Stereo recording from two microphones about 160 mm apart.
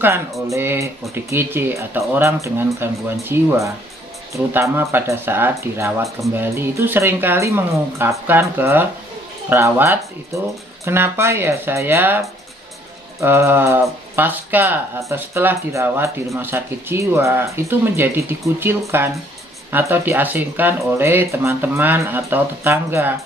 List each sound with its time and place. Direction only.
0.5 s speech: 15° right (ahead or behind)
13.2 s speech: 15° right (ahead or behind)